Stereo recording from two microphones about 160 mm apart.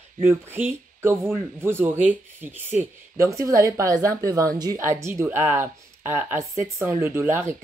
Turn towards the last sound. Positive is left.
turn(degrees=-15)  # may be behind; listen again after turning